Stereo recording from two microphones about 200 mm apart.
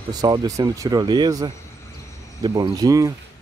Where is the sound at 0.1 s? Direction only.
20° right (ahead or behind).